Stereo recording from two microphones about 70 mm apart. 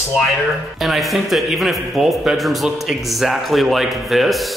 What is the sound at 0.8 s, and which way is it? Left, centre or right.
A man's voice, centre.